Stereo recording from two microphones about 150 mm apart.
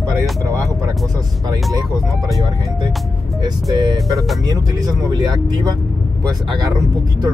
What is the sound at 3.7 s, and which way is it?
Speech, 25° right (ahead or behind).